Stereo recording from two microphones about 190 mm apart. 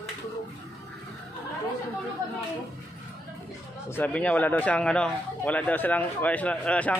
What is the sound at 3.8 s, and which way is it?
Speech, 10° left (ahead or behind).